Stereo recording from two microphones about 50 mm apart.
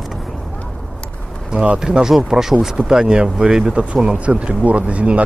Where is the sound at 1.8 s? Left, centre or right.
Centre.